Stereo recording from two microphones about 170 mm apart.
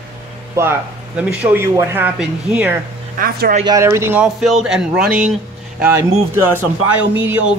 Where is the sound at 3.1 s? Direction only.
60° right (ahead or behind).